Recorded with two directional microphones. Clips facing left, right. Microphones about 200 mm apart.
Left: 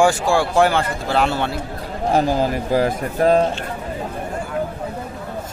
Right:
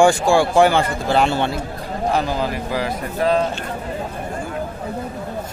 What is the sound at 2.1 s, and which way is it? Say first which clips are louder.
Speech: left 7 dB; 45° left (ahead or behind).